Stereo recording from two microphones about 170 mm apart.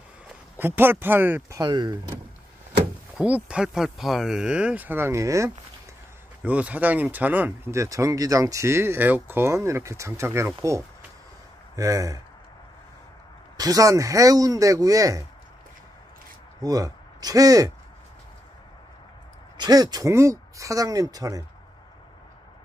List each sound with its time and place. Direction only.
0.3 s speech: 10° right (ahead or behind)
1.6 s speech: 25° right (ahead or behind)
3.2 s speech: 5° right (ahead or behind)
11.7 s speech: 20° right (ahead or behind)
13.6 s speech: 20° right (ahead or behind)
16.6 s speech: 20° right (ahead or behind)
19.5 s speech: 25° right (ahead or behind)